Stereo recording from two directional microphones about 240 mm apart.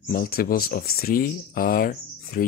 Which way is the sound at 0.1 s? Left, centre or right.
Left.